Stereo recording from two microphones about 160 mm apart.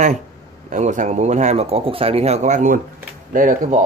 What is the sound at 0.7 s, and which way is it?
A man's voice, 50° right (ahead or behind).